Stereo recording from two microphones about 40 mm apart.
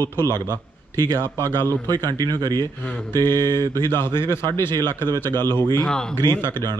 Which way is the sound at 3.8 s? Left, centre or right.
Left.